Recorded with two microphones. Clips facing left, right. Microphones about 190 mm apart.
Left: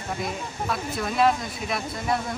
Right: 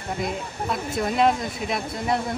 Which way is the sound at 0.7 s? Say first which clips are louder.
Right 3 dB; 20° right (ahead or behind).